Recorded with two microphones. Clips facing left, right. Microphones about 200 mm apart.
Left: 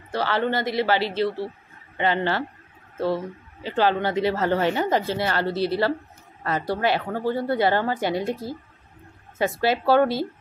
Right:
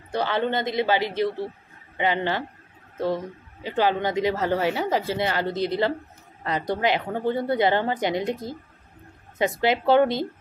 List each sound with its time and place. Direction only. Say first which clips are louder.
0.1 s a woman's voice: even; 15° right (ahead or behind)
3.6 s a woman's voice: left 1 dB; 15° right (ahead or behind)
5.0 s a woman's voice: left 1 dB; 15° right (ahead or behind)
9.6 s speech: even; 20° right (ahead or behind)